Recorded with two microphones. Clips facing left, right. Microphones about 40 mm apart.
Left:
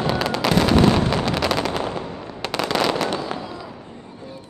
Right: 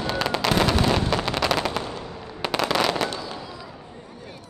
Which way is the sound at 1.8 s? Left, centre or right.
Left.